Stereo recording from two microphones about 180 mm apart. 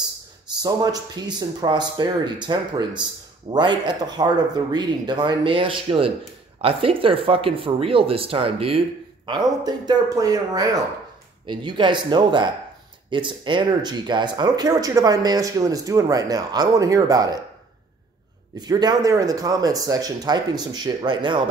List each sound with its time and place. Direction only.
0.6 s speech: 20° right (ahead or behind)
18.6 s speech: 20° right (ahead or behind)